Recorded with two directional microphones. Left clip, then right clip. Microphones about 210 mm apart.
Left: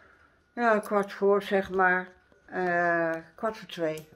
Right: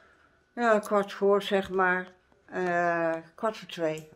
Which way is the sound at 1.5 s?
20° right (ahead or behind).